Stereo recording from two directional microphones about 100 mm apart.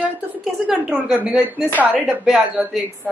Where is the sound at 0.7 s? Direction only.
10° right (ahead or behind).